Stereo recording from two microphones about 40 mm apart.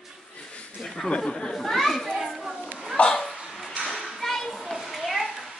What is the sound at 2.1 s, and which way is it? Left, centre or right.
Children playing, centre.